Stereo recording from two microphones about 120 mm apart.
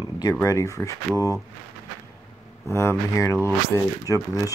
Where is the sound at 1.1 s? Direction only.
20° right (ahead or behind).